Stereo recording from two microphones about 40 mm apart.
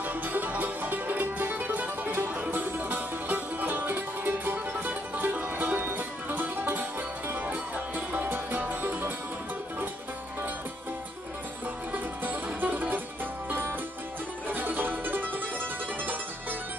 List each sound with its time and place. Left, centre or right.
0.0 s music: right
5.2 s music: right
7.3 s music: right
11.9 s music: right
13.5 s music: right
14.5 s music: right